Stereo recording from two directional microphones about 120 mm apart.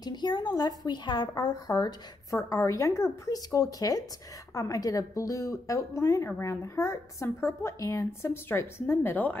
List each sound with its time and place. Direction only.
0.0 s a woman's voice: 40° left (ahead or behind); by 9.4 s 15° left (ahead or behind)